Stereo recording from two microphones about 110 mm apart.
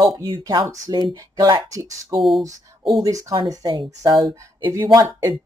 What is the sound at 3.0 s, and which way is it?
Speech, 30° right (ahead or behind).